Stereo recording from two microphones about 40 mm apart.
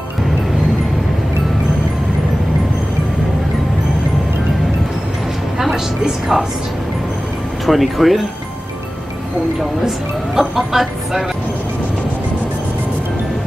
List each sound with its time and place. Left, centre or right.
5.6 s music: centre
7.6 s speech: centre
9.6 s speech: centre